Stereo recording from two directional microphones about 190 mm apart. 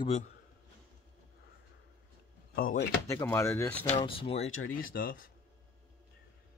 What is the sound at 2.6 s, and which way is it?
Speech, 50° left (ahead or behind).